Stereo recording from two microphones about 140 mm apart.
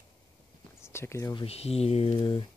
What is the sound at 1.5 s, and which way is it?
Speech, 45° left (ahead or behind).